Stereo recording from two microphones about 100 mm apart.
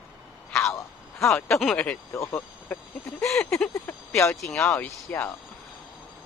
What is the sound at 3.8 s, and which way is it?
Speech, 25° left (ahead or behind).